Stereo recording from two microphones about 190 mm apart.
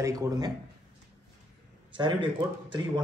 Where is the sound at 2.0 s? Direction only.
25° right (ahead or behind).